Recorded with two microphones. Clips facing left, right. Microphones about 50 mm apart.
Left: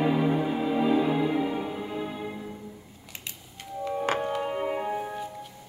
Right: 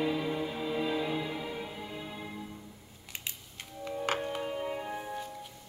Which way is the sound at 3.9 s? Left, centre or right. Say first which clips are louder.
Left 5 dB; left.